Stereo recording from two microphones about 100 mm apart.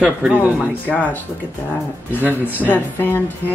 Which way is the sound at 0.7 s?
15° left (ahead or behind).